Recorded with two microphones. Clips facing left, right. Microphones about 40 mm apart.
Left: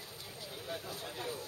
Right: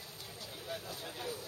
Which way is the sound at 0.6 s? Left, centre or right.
Centre.